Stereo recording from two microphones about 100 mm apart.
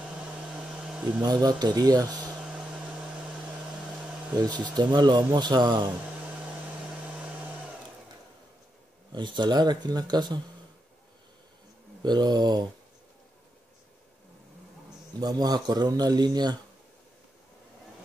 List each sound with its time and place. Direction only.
0.1 s a sound: 10° right (ahead or behind)
1.2 s a man's voice: 45° right (ahead or behind)
2.3 s a sound: 5° right (ahead or behind)
4.4 s a man's voice: 45° right (ahead or behind)
9.1 s a man's voice: 50° right (ahead or behind)
12.0 s a man's voice: 45° right (ahead or behind)
15.1 s a man's voice: 40° right (ahead or behind)